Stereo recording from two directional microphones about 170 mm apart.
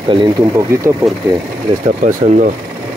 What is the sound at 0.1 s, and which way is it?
Speech, 25° right (ahead or behind).